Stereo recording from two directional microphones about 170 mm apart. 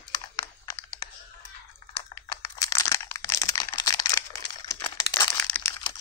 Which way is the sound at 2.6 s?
20° left (ahead or behind).